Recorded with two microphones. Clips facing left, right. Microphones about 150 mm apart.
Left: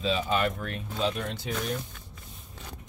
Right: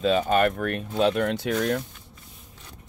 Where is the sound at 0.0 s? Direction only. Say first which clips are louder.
Right 6 dB; 55° right (ahead or behind); by 1.8 s 75° right (ahead or behind).